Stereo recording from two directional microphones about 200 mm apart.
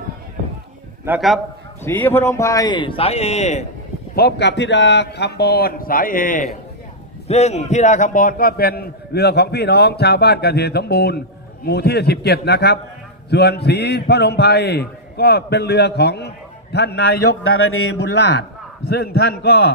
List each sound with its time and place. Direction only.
1.0 s a man's voice: 5° right (ahead or behind)
1.9 s a man's voice: 10° left (ahead or behind); by 3.6 s 35° left (ahead or behind)
4.1 s a man's voice: 55° left (ahead or behind)
17.4 s a man's voice: 90° left; by 19.7 s 55° left (ahead or behind)